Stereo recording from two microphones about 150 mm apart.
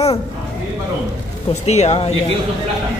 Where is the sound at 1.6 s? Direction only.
45° left (ahead or behind).